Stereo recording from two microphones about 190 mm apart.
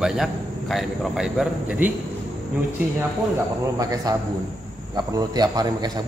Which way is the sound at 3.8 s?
20° right (ahead or behind).